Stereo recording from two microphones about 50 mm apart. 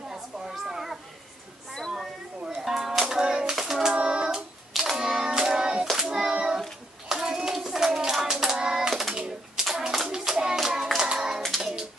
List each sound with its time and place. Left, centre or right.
0.1 s children playing: centre
2.4 s music: centre
3.5 s a sound: centre
3.9 s child singing: centre
4.7 s hands: centre
11.4 s music: centre